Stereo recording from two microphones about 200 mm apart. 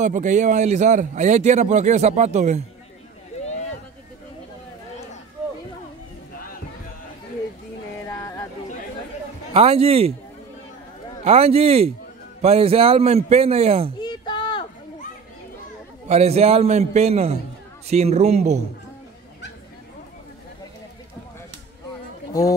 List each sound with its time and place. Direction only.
0.0 s speech: 40° right (ahead or behind)
3.3 s vehicle: 35° left (ahead or behind)
8.1 s a sound: 15° left (ahead or behind)
9.5 s speech: 30° right (ahead or behind)
11.2 s speech: 30° right (ahead or behind)
14.0 s a sound: 25° left (ahead or behind)
16.1 s speech: 30° right (ahead or behind)